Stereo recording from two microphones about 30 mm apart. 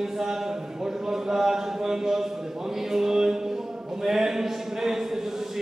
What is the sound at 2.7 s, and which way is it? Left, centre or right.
Mantra, centre.